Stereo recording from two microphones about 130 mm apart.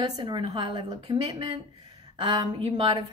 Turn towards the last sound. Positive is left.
turn(degrees=-40)  # may be behind; listen again after turning